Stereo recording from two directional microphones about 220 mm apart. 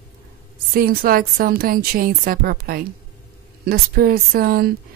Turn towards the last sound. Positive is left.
turn(degrees=-40)  # may be behind; listen again after turning